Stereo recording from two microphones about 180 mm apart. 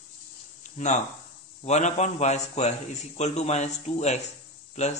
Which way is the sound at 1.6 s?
40° left (ahead or behind).